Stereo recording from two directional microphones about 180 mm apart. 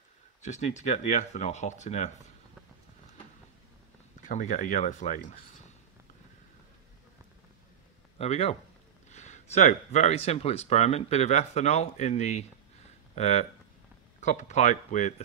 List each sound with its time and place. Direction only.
0.4 s speech: 40° left (ahead or behind)
4.2 s speech: 45° left (ahead or behind)
8.2 s speech: 35° left (ahead or behind)